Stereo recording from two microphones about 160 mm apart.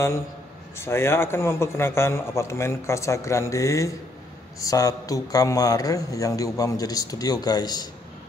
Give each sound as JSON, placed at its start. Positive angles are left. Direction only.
{"t": 0.7, "sound": "a man's voice", "side_deg": 15}